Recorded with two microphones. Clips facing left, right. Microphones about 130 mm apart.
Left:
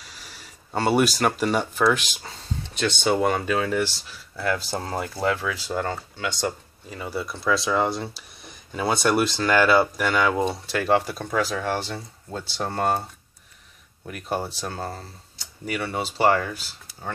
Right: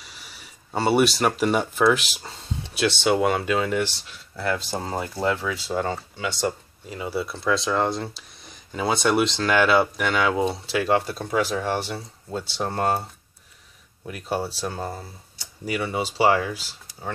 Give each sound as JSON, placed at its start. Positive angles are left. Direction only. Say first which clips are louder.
{"t": 0.7, "sound": "speech", "louder": "right 1 dB", "side_deg": -5}
{"t": 14.3, "sound": "speech", "louder": "right 1 dB", "side_deg": -5}
{"t": 14.8, "sound": "speech", "louder": "right 1 dB", "side_deg": -15}